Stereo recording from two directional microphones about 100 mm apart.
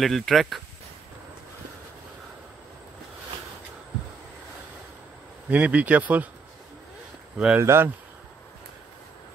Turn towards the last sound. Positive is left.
turn(degrees=-25)  # may be behind; listen again after turning